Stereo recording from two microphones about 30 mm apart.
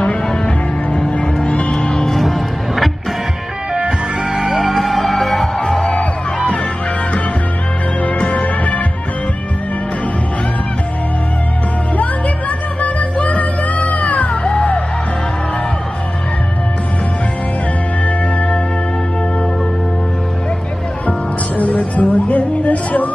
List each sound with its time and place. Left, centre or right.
1.4 s music: left
1.9 s music: centre
2.1 s music: centre
4.3 s music: centre
5.6 s music: centre
5.9 s music: left
8.3 s music: left
12.0 s music: left
14.3 s music: left
21.5 s music: left